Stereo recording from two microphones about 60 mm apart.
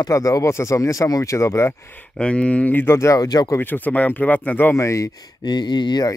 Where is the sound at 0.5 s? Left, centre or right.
Left.